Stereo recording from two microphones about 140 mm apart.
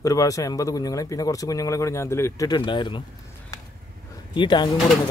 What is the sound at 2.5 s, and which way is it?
Speech, 30° left (ahead or behind).